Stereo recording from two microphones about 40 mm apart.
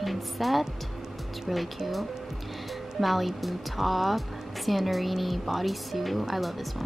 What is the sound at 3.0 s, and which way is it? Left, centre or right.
A woman's voice, centre.